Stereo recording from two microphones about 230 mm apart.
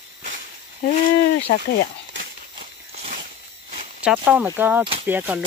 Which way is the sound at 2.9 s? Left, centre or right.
Right.